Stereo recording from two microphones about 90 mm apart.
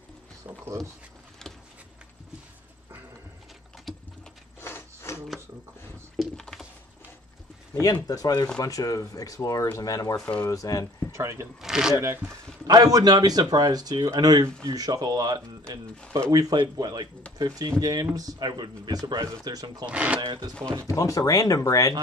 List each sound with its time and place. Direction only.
1.4 s a sound: 5° left (ahead or behind)
3.9 s typing: centre (ahead or behind)
4.6 s wood: 25° left (ahead or behind)
6.1 s a sound: 5° left (ahead or behind)
7.8 s speech: 40° left (ahead or behind)
11.1 s speech: 30° right (ahead or behind)
11.6 s speech: 5° right (ahead or behind)
12.0 s speech: 25° right (ahead or behind)
12.6 s speech: 45° right (ahead or behind)
19.9 s speech: 15° right (ahead or behind)
20.8 s speech: 40° left (ahead or behind)